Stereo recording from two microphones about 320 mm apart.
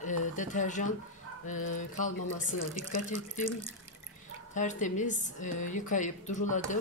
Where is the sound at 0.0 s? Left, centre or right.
Left.